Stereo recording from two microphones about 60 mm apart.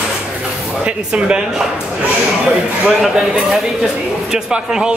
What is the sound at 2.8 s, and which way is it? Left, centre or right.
A man's voice, centre.